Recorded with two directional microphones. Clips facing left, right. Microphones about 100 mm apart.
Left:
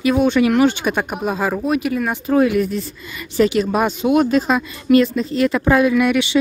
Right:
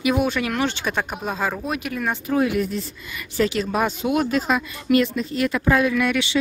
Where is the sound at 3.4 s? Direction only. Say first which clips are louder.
Left 5 dB; 20° left (ahead or behind).